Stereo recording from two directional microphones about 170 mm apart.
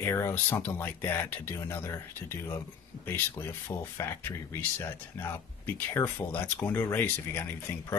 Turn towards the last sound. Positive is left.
turn(degrees=10)  # may be behind; listen again after turning